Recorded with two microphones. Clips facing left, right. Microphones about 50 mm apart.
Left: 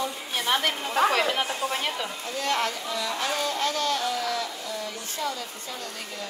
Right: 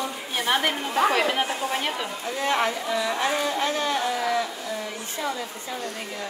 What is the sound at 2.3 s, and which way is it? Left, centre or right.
Speech, right.